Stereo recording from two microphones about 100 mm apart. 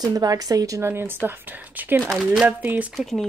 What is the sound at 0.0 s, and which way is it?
A woman's voice, 40° right (ahead or behind).